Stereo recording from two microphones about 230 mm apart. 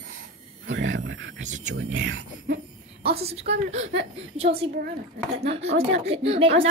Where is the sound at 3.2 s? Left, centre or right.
Right.